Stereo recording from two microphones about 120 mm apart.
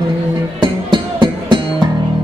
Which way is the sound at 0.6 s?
40° right (ahead or behind).